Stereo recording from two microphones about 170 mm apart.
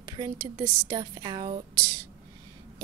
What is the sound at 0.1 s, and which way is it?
Speech, 20° right (ahead or behind).